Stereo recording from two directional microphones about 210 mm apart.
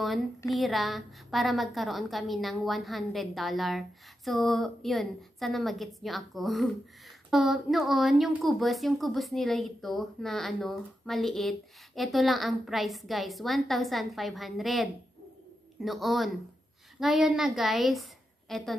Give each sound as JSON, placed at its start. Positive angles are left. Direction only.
{"t": 0.5, "sound": "a woman's voice", "side_deg": 0}